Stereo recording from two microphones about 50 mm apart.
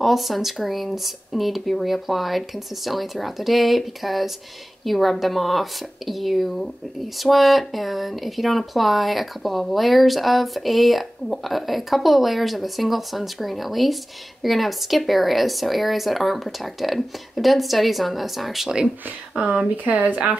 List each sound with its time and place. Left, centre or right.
0.0 s speech: centre
19.4 s speech: right